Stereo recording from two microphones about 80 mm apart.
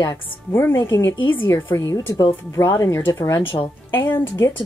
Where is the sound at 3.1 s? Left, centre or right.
Left.